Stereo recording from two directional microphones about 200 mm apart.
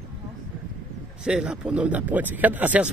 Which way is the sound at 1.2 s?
5° right (ahead or behind).